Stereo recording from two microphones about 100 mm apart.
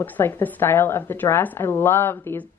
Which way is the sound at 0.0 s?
20° left (ahead or behind).